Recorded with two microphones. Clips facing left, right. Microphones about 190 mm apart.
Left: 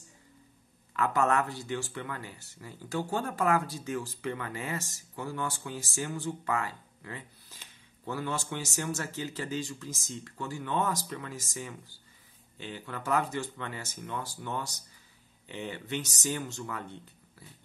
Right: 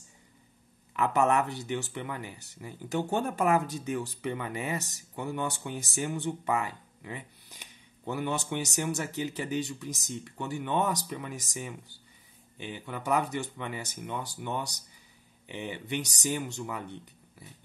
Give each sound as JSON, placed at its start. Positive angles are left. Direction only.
{"t": 0.9, "sound": "speech", "side_deg": -20}